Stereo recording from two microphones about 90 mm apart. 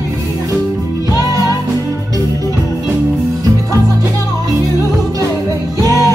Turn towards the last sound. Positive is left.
turn(degrees=-40)  # may be behind; listen again after turning